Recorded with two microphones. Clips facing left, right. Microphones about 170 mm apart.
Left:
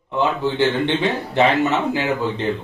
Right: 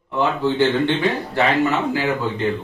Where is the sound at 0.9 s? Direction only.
20° left (ahead or behind).